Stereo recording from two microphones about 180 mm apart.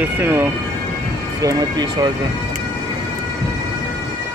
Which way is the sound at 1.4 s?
20° right (ahead or behind).